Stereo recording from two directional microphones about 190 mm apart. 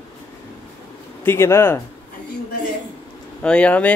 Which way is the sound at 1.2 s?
15° left (ahead or behind).